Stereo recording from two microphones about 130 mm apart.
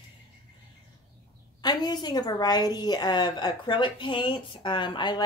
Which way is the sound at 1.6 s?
30° left (ahead or behind).